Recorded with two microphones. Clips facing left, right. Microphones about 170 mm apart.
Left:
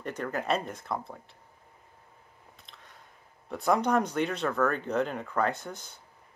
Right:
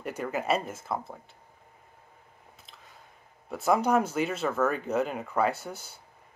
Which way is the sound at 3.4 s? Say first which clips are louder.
Right 1 dB; 5° right (ahead or behind).